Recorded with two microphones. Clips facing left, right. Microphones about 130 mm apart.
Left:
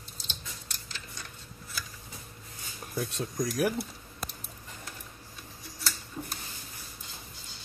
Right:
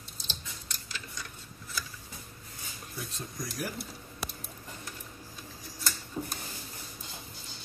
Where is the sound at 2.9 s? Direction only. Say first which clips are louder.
Left 9 dB; 65° left (ahead or behind).